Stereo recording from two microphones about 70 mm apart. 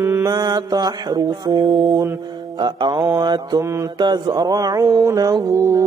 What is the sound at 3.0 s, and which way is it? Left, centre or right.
Mantra, right.